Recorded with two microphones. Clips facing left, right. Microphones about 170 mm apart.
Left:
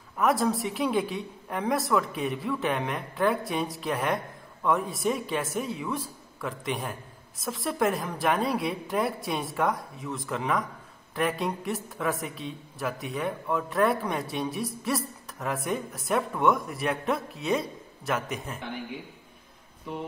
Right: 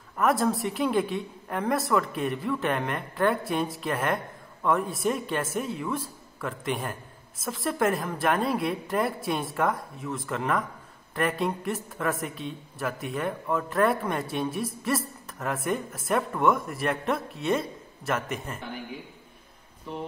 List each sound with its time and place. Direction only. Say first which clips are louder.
0.2 s speech: right 1 dB; centre (ahead or behind)